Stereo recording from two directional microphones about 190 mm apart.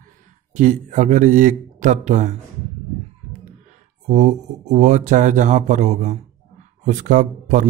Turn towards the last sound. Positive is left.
turn(degrees=-40)  # may be behind; listen again after turning